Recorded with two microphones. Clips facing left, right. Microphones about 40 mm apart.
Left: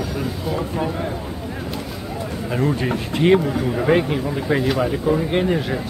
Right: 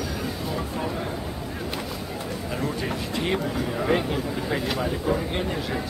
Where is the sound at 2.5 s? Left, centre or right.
Left.